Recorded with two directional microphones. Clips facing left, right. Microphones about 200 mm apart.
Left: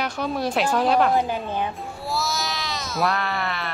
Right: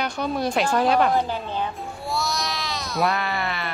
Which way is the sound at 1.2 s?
15° left (ahead or behind).